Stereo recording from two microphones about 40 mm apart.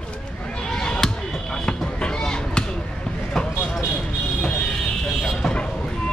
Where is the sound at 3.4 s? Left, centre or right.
Centre.